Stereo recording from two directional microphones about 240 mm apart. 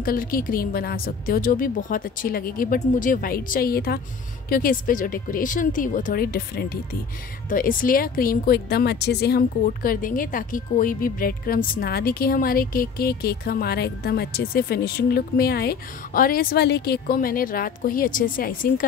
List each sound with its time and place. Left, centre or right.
0.0 s a woman's voice: left